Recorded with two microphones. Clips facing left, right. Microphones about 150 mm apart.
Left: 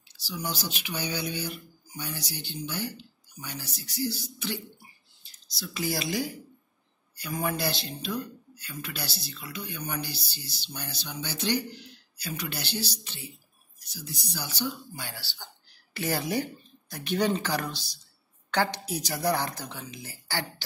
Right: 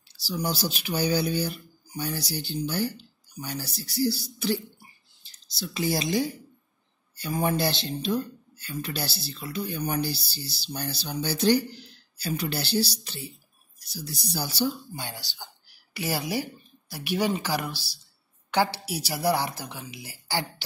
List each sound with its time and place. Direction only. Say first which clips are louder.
0.2 s speech: right 5 dB; 35° right (ahead or behind)
5.6 s speech: right 4 dB; 25° right (ahead or behind)
15.0 s a woman's voice: right 3 dB; 20° right (ahead or behind)